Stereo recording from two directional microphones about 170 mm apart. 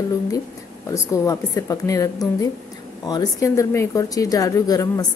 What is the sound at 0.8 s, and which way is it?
A woman's voice, 20° left (ahead or behind).